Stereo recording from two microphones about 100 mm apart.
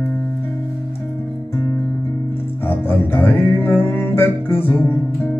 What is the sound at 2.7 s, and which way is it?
Music, 20° left (ahead or behind).